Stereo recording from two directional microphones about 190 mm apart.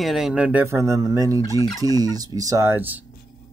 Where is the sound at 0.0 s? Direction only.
Centre (ahead or behind); by 1.4 s 15° right (ahead or behind).